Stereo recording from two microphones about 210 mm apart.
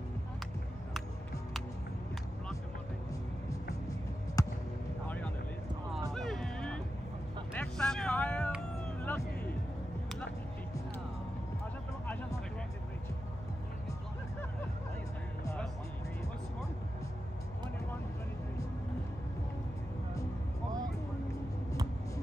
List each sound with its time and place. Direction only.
4.4 s basketball bounce: 15° left (ahead or behind)
5.0 s vehicle: 5° left (ahead or behind)
6.1 s music: centre (ahead or behind)
7.5 s vehicle: 5° left (ahead or behind)
8.5 s cat: 5° left (ahead or behind)
15.4 s music: 5° left (ahead or behind)